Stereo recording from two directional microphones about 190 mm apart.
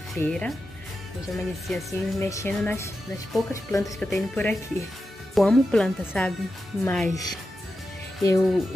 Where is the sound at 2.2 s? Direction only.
15° left (ahead or behind).